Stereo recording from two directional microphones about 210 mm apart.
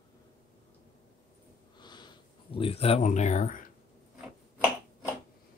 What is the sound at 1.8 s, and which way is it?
Sniff, 20° left (ahead or behind).